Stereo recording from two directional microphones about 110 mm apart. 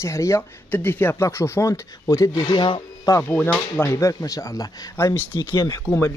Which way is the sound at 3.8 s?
25° left (ahead or behind).